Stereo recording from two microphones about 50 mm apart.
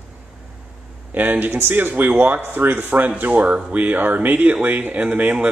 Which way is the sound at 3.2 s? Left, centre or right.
Right.